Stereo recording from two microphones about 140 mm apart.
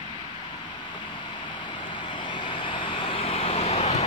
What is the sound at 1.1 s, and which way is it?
Vehicle, 35° left (ahead or behind).